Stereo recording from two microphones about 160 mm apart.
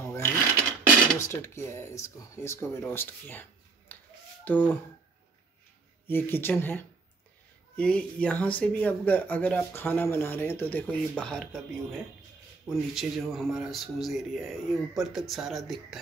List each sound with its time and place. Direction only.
0.0 s a sound: 15° left (ahead or behind)
1.2 s speech: 15° left (ahead or behind)
3.9 s finger snapping: 10° left (ahead or behind)
4.5 s speech: 10° left (ahead or behind)
6.0 s speech: 15° left (ahead or behind)